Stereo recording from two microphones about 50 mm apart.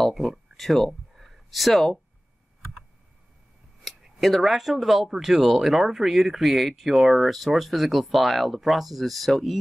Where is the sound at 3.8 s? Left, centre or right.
Centre.